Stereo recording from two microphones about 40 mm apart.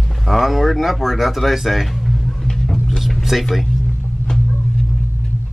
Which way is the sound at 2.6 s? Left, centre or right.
Centre.